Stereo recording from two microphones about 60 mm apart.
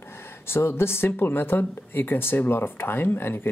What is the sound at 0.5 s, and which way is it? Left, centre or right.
Speech, left.